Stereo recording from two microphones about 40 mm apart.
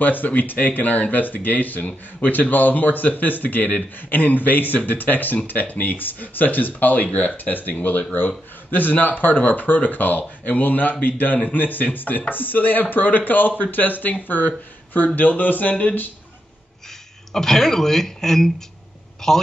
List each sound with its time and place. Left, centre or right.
0.0 s a man's voice: left
17.3 s speech: centre